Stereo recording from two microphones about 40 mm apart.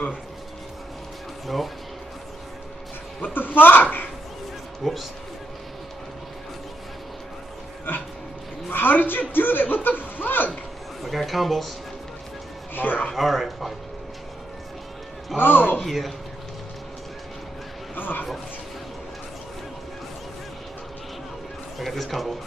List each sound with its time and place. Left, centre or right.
3.2 s speech: left
4.8 s speech: centre
8.6 s a woman's voice: left
11.0 s a man's voice: centre
12.7 s speech: left
13.1 s a man's voice: centre
15.3 s a man's voice: left
15.8 s a man's voice: centre
17.9 s a sound: left
21.7 s a man's voice: centre